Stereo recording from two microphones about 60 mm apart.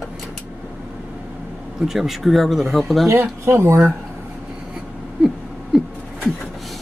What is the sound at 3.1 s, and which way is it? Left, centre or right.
Speech, right.